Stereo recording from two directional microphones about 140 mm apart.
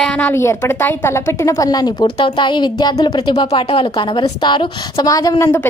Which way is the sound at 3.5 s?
45° left (ahead or behind).